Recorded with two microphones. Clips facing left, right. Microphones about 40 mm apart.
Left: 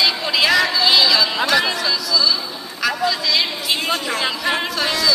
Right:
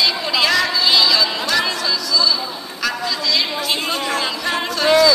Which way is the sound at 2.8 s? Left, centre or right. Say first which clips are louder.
Left 2 dB; centre.